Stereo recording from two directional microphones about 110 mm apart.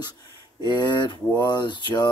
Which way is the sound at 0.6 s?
40° left (ahead or behind).